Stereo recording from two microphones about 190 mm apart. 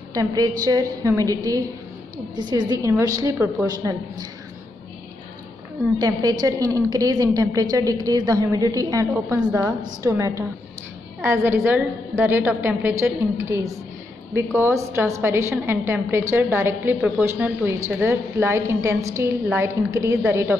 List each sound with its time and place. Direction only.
0.1 s a woman's voice: 20° right (ahead or behind)
5.9 s a woman's voice: 20° right (ahead or behind)